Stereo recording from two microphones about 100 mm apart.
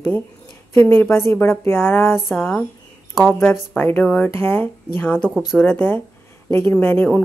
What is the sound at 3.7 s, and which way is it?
Speech, 15° left (ahead or behind).